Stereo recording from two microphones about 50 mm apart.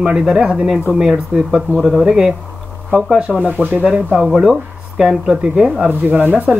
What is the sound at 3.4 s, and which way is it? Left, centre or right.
Speech, right.